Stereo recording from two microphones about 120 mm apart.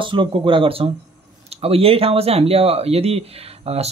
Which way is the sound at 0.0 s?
45° right (ahead or behind).